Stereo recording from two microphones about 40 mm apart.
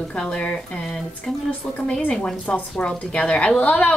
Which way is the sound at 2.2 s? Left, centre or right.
Left.